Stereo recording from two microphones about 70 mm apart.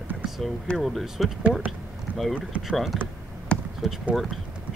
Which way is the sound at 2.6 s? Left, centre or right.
Centre.